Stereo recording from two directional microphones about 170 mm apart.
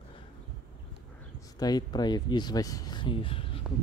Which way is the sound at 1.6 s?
25° left (ahead or behind).